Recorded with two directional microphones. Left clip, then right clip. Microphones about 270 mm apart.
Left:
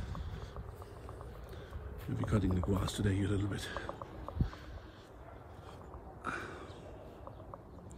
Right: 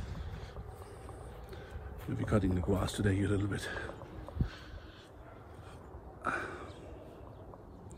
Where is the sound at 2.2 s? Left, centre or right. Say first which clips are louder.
Right 3 dB; centre.